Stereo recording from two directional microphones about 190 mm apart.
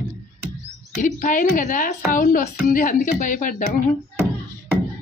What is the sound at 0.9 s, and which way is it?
A woman's voice, 40° left (ahead or behind).